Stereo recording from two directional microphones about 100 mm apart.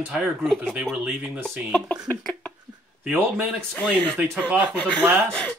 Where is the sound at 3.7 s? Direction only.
10° left (ahead or behind).